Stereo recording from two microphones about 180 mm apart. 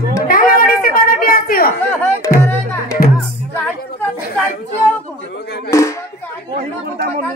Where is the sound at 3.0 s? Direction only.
55° left (ahead or behind).